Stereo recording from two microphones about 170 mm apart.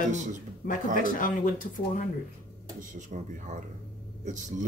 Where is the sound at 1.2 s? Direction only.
50° left (ahead or behind).